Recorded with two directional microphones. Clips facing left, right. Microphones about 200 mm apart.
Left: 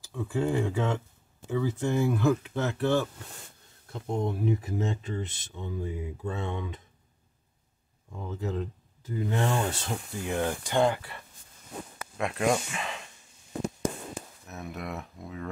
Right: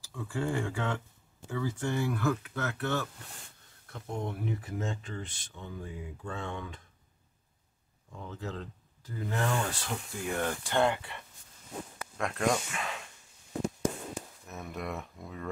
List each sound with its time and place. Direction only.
0.1 s speech: 20° left (ahead or behind)
8.3 s speech: 25° left (ahead or behind); by 13.0 s 5° left (ahead or behind)
14.5 s speech: centre (ahead or behind)